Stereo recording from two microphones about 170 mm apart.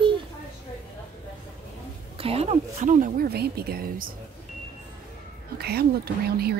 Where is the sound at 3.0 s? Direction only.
65° right (ahead or behind).